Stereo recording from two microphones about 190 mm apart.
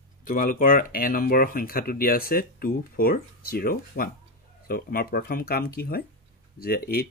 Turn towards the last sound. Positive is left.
turn(degrees=55)  # may be behind; listen again after turning